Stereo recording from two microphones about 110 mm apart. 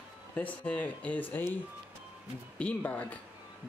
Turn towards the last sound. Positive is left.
turn(degrees=10)  # may be behind; listen again after turning